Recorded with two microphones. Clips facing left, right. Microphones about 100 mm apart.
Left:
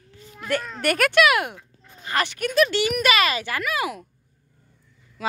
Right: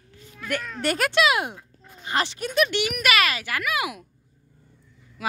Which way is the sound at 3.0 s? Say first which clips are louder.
Left 2 dB; centre (ahead or behind).